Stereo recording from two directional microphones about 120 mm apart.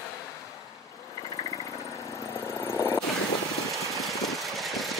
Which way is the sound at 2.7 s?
20° left (ahead or behind).